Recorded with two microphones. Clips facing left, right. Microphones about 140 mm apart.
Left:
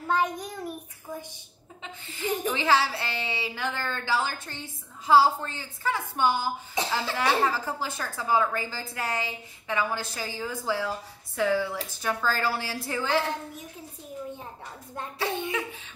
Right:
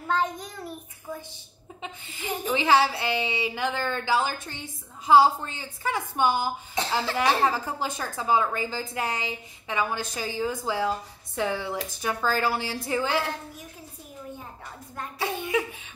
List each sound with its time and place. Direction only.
0.1 s child singing: 10° left (ahead or behind)
1.8 s a woman's voice: 15° right (ahead or behind)